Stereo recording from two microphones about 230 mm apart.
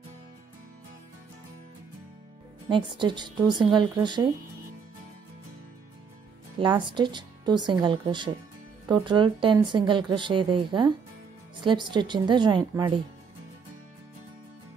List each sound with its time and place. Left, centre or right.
2.7 s a woman's voice: centre
6.6 s a woman's voice: right